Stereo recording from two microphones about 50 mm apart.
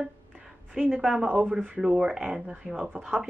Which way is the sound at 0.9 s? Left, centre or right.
Centre.